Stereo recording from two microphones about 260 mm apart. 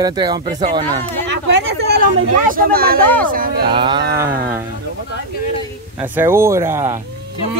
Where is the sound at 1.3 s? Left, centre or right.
Right.